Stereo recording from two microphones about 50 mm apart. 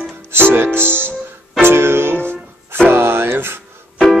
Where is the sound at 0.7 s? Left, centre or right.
Right.